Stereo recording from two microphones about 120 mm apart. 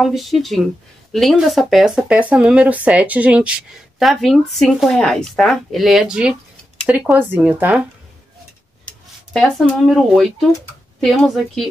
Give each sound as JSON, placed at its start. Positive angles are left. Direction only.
{"t": 0.0, "sound": "speech", "side_deg": 0}
{"t": 9.3, "sound": "speech", "side_deg": 0}